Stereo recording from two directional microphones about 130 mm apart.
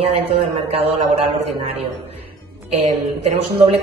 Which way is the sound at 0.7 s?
50° right (ahead or behind).